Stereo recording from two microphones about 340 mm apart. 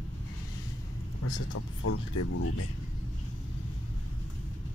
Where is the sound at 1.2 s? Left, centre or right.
Left.